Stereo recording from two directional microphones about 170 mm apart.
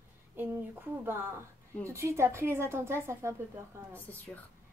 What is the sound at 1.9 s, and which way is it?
A woman's voice, 15° right (ahead or behind).